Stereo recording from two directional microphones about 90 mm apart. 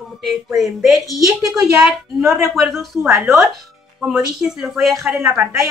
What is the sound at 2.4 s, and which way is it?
Speech, centre (ahead or behind).